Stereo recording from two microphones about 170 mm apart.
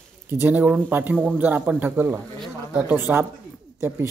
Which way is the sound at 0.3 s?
10° right (ahead or behind).